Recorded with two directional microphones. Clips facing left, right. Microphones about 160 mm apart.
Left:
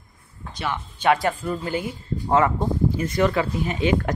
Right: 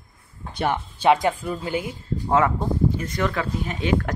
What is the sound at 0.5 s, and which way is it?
Speech, 50° right (ahead or behind).